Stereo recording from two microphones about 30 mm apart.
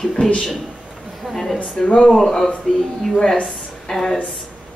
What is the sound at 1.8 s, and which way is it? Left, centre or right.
Speech, left.